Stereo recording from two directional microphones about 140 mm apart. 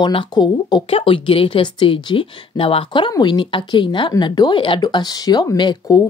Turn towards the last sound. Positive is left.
turn(degrees=30)  # may be behind; listen again after turning